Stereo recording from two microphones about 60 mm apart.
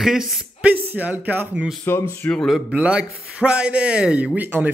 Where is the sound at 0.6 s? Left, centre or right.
Right.